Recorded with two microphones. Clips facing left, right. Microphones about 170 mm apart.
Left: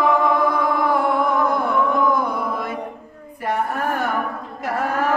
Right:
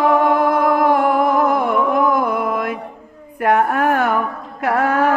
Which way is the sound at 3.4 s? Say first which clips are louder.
Right 7 dB; 80° right.